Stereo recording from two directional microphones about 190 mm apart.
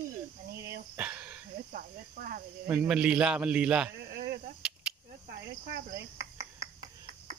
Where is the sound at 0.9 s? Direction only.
5° right (ahead or behind).